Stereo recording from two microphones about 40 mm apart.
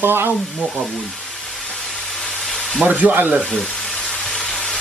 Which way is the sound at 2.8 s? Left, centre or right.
Right.